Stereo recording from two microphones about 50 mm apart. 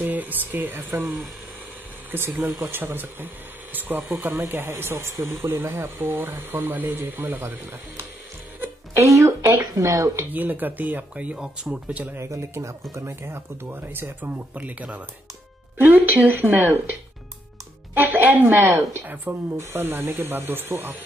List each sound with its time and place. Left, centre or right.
0.0 s speech: right
2.0 s speech: right
4.9 s speech: right
6.0 s a woman's voice: right
8.9 s a woman's voice: right
10.3 s a woman's voice: right
11.3 s speech: centre
11.7 s a woman's voice: right
12.2 s speech: right
14.5 s a woman's voice: right
17.9 s a woman's voice: right
19.5 s speech: right